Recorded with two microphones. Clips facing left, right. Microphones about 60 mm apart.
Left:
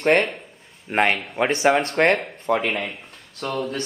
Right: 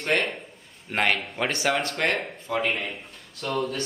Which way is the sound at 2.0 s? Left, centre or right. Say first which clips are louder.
Left 7 dB; left.